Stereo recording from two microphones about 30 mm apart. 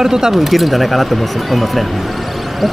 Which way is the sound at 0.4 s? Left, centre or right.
Centre.